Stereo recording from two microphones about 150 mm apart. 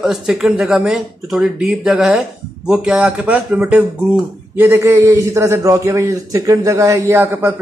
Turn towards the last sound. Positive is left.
turn(degrees=-10)  # may be behind; listen again after turning